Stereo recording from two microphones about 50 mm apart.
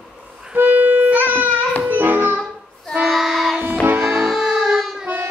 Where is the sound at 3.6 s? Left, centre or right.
Right.